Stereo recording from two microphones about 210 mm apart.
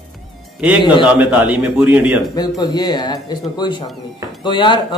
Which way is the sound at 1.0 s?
5° right (ahead or behind).